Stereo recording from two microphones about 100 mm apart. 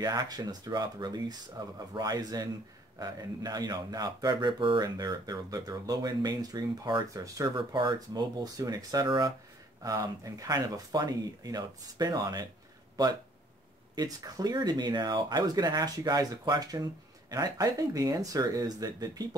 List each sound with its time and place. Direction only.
0.0 s speech: 40° right (ahead or behind)
9.8 s speech: 35° right (ahead or behind)
13.9 s speech: 40° right (ahead or behind)